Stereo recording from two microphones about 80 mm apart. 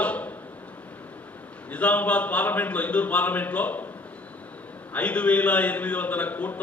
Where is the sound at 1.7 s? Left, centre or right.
Centre.